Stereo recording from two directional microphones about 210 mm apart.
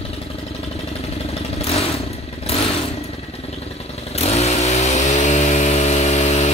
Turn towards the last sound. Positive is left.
turn(degrees=30)  # may be behind; listen again after turning